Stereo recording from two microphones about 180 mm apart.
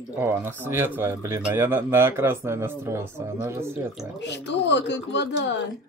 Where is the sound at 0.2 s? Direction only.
10° right (ahead or behind).